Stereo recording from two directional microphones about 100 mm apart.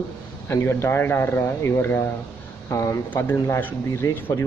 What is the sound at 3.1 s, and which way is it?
Speech, 20° left (ahead or behind).